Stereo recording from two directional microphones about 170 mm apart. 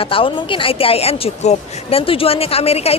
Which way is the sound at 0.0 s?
30° left (ahead or behind).